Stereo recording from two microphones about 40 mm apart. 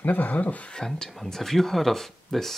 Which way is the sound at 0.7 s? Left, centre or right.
Centre.